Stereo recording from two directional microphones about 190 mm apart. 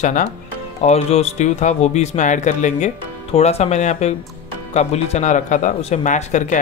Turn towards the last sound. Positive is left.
turn(degrees=40)  # may be behind; listen again after turning